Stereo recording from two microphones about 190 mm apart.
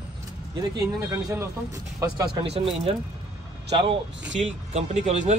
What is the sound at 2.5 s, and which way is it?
A man's voice, 35° right (ahead or behind).